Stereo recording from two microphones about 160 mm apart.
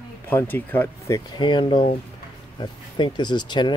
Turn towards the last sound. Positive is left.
turn(degrees=30)  # may be behind; listen again after turning